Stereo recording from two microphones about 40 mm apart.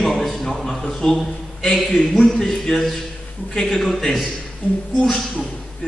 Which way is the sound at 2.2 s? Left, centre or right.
Centre.